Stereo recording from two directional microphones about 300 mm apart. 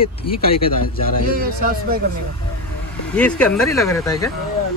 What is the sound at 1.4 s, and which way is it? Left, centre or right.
Speech, right.